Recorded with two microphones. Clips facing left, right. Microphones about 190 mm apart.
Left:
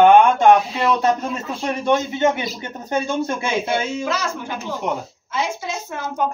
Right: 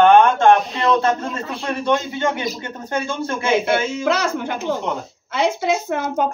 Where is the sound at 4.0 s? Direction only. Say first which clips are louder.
Right 4 dB; 60° right (ahead or behind).